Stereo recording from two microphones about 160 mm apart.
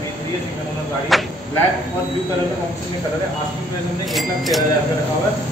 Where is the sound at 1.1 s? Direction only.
Centre (ahead or behind).